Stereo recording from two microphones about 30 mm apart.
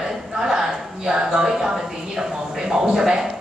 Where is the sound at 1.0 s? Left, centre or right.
Right.